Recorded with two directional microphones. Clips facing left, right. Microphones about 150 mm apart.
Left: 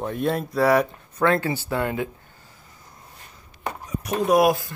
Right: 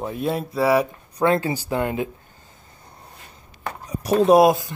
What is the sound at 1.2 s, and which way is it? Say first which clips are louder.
Speech: right 1 dB; 20° right (ahead or behind).